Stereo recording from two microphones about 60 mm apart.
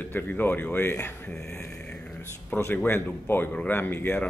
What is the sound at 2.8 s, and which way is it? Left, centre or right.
Speech, left.